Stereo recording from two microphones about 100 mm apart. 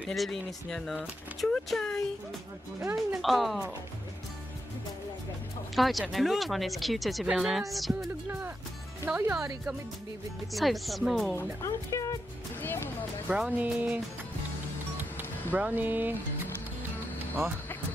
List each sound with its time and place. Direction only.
0.1 s speech: centre (ahead or behind)
2.8 s music: 30° right (ahead or behind)
3.2 s speech: centre (ahead or behind)
5.8 s speech: centre (ahead or behind)
8.3 s music: 20° right (ahead or behind)
9.1 s speech: 5° right (ahead or behind)
10.5 s speech: centre (ahead or behind)
11.6 s speech: 35° left (ahead or behind)
12.6 s speech: 25° left (ahead or behind)
13.3 s speech: 15° right (ahead or behind)
15.5 s music: 20° right (ahead or behind)